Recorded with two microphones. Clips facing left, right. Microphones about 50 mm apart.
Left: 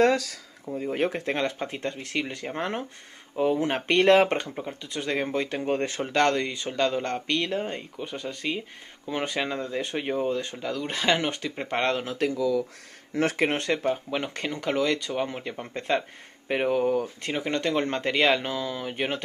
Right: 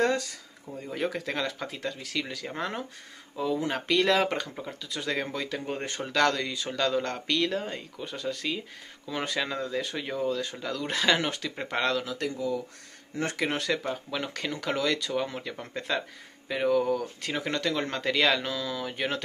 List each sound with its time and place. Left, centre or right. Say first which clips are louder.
0.7 s speech: left 5 dB; left
3.3 s speech: left 4 dB; left
4.8 s speech: left 3 dB; left
9.8 s speech: left 5 dB; left
10.5 s speech: left 1 dB; centre
12.2 s speech: left 6 dB; left
13.1 s speech: left 6 dB; left
13.7 s speech: left 4 dB; left
16.4 s speech: left 1 dB; left